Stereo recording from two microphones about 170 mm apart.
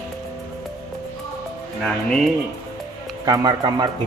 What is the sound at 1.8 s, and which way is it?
Speech, 5° left (ahead or behind).